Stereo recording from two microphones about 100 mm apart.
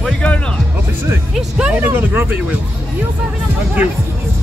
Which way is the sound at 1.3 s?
10° right (ahead or behind).